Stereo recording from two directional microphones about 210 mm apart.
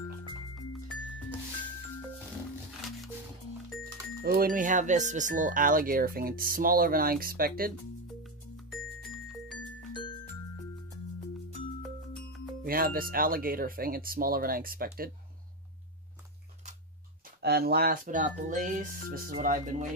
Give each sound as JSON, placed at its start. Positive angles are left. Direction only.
{"t": 4.2, "sound": "speech", "side_deg": -45}
{"t": 9.3, "sound": "music", "side_deg": 0}
{"t": 12.6, "sound": "speech", "side_deg": -45}
{"t": 17.4, "sound": "speech", "side_deg": -50}